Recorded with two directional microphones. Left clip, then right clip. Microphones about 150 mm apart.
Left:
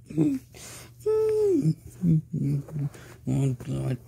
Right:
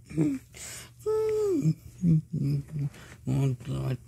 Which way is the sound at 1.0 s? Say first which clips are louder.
Left 4 dB; 35° right (ahead or behind).